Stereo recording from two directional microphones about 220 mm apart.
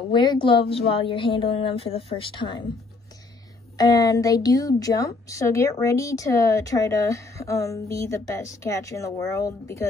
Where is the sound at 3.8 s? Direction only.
15° left (ahead or behind).